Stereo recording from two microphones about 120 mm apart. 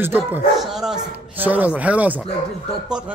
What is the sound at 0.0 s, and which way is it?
Speech, 15° right (ahead or behind).